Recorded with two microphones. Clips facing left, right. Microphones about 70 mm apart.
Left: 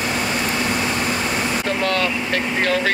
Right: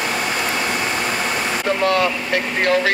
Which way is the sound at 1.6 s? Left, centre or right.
Centre.